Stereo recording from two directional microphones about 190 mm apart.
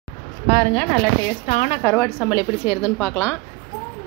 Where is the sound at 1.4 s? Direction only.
45° left (ahead or behind).